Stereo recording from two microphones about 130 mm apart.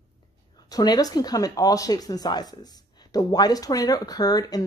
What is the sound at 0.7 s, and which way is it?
Speech, 30° left (ahead or behind).